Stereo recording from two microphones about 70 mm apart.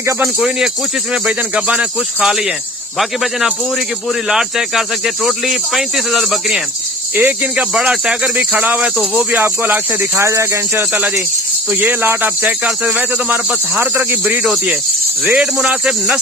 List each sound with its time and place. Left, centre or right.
1.5 s speech: right
4.3 s speech: centre
7.2 s speech: right
10.1 s speech: right
11.8 s speech: right
12.6 s speech: centre
15.2 s speech: centre